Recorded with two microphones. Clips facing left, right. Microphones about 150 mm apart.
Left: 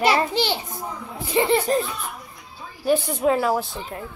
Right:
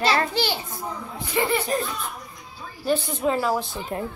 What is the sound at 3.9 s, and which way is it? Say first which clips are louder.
Speech: right 6 dB; 30° right (ahead or behind).